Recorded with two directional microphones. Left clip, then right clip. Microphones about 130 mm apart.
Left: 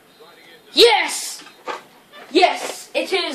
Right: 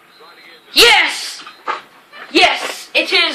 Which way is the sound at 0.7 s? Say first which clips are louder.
Right 4 dB; 40° left (ahead or behind).